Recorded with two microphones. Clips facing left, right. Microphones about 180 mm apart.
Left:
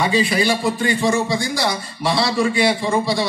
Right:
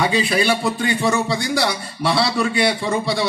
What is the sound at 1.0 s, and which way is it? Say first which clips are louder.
A man's voice: even; 65° right (ahead or behind).